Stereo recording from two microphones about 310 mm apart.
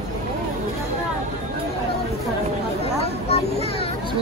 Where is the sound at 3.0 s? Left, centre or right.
Centre.